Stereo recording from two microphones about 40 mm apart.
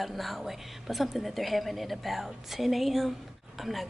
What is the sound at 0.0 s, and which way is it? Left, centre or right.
A woman's voice, centre.